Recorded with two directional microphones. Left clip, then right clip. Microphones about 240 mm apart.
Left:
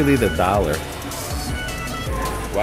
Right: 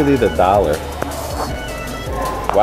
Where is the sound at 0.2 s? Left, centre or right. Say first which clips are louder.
Right 5 dB; centre.